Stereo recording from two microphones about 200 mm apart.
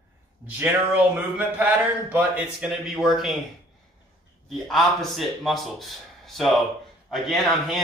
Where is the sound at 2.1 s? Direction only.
5° right (ahead or behind).